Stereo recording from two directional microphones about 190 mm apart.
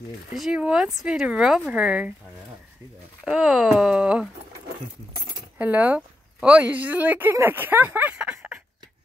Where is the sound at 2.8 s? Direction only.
15° right (ahead or behind).